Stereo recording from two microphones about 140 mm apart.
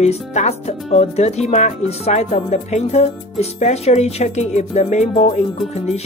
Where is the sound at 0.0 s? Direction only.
55° left (ahead or behind).